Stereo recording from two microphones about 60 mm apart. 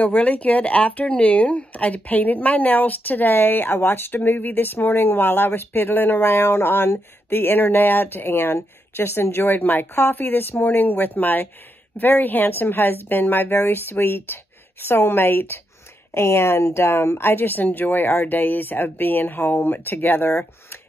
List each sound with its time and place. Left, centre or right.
0.0 s speech: left
17.2 s speech: left